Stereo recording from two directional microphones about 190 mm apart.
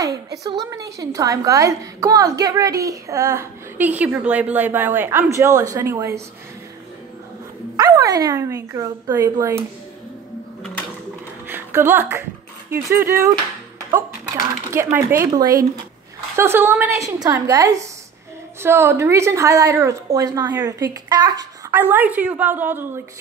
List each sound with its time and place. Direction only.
0.4 s a woman's voice: 20° right (ahead or behind)
7.7 s speech: 20° right (ahead or behind)
11.4 s a woman's voice: 10° right (ahead or behind)